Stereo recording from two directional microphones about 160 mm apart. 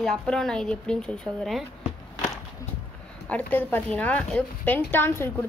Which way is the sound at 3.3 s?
10° left (ahead or behind).